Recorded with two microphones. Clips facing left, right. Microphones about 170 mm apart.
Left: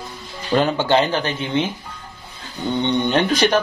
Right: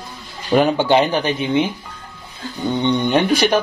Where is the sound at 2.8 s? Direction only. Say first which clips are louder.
Right 2 dB; 15° right (ahead or behind).